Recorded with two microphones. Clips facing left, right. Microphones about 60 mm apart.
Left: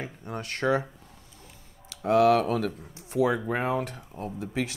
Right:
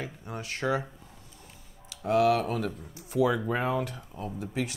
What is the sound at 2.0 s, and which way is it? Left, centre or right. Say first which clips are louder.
Speech: left 3 dB; left.